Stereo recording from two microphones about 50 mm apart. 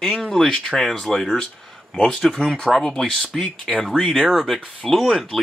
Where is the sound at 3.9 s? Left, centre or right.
Centre.